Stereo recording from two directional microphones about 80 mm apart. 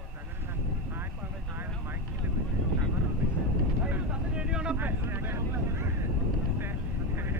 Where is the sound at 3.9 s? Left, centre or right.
Centre.